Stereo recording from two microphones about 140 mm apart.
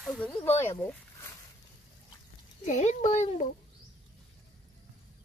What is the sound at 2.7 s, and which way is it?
Speech, 55° left (ahead or behind).